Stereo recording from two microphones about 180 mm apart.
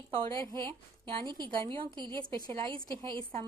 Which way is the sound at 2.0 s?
25° right (ahead or behind).